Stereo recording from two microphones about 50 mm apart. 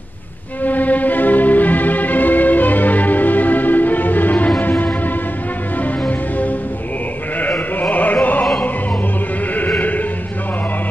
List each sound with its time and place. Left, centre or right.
0.7 s music: left
7.3 s sheep: left
7.9 s music: left
9.8 s music: left